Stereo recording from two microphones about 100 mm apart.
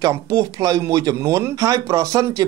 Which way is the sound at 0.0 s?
35° right (ahead or behind).